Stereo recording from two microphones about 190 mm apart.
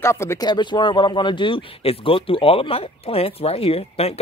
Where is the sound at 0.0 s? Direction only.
15° left (ahead or behind).